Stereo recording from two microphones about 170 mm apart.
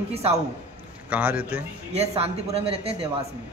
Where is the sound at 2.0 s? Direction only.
35° right (ahead or behind).